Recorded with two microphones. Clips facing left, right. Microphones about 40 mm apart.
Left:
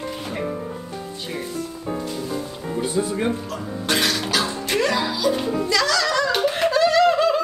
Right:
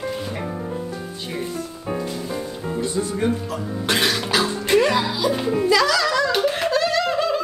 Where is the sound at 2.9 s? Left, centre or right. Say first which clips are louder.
Even; centre.